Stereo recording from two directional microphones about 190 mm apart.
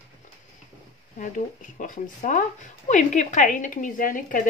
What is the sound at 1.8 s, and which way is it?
Speech, 40° left (ahead or behind).